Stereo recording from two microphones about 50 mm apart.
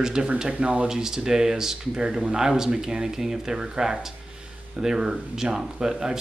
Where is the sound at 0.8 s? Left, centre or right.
Centre.